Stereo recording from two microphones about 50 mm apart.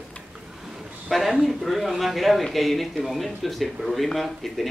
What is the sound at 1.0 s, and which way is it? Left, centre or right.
A man's voice, centre.